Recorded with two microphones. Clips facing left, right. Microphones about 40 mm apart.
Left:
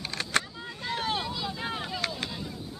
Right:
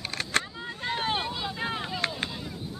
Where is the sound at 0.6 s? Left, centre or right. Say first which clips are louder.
Right 2 dB; right; by 2.0 s centre.